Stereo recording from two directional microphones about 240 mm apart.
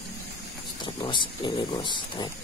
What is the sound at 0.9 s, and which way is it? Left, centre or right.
Speech, centre.